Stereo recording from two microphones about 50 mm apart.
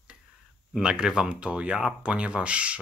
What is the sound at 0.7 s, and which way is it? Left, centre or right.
Speech, centre.